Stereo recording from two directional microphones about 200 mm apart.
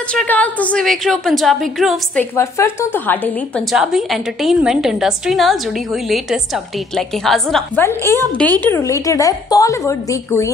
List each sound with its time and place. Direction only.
0.1 s a woman's voice: 5° left (ahead or behind)
2.3 s a woman's voice: 15° left (ahead or behind)
3.7 s a woman's voice: centre (ahead or behind)
8.0 s speech: 15° right (ahead or behind)
8.5 s a woman's voice: 10° left (ahead or behind)